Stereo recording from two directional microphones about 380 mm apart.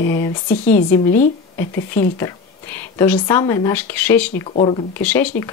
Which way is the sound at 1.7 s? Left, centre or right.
Left.